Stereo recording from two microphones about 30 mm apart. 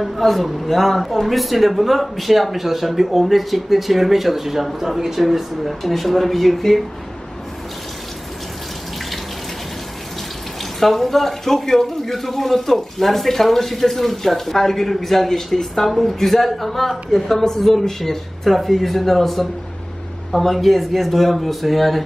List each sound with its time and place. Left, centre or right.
0.2 s a man's voice: centre
10.8 s speech: centre
17.8 s speech: centre
18.4 s speech: centre